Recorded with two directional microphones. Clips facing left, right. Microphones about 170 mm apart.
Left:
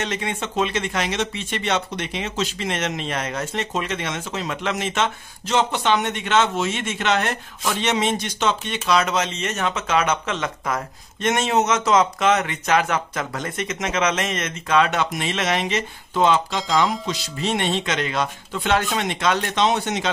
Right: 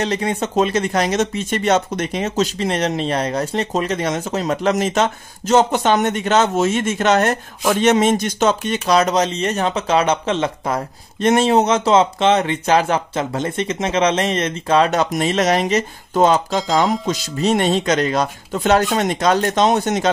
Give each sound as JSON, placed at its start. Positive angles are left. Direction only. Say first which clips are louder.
{"t": 0.0, "sound": "speech", "louder": "right 6 dB", "side_deg": -35}